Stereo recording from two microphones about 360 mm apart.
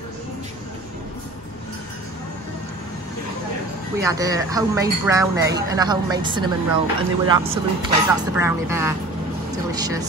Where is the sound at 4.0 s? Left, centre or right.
Centre.